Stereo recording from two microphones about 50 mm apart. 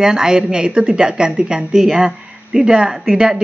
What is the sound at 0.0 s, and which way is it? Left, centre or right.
Speech, centre.